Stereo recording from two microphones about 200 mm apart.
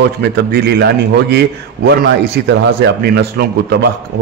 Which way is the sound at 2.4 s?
55° right (ahead or behind).